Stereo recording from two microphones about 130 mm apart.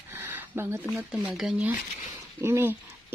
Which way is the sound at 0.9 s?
5° right (ahead or behind).